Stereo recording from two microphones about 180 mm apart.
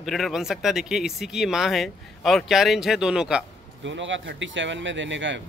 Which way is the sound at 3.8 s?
90° right.